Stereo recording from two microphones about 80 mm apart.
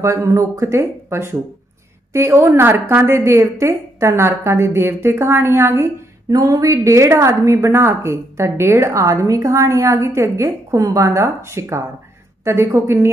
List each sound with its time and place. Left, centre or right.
0.0 s a woman's voice: right
6.3 s a woman's voice: right